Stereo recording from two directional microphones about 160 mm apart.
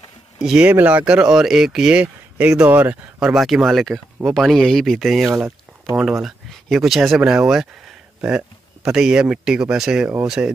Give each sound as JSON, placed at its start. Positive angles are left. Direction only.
{"t": 0.4, "sound": "speech", "side_deg": -5}
{"t": 5.3, "sound": "a sound", "side_deg": -20}
{"t": 6.2, "sound": "speech", "side_deg": 0}